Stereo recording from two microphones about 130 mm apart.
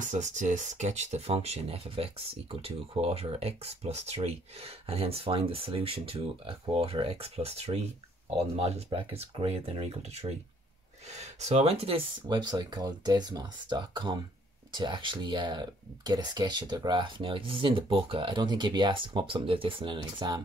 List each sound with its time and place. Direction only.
0.0 s speech: 70° right (ahead or behind); by 12.4 s 50° right (ahead or behind)
12.4 s speech: 35° right (ahead or behind)